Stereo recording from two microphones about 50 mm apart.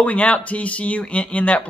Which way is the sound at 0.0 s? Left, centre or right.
Left.